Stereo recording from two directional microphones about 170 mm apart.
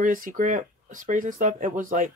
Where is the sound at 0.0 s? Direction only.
50° right (ahead or behind).